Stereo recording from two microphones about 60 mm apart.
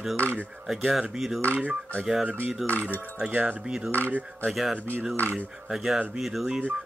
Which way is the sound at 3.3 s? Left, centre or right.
Right.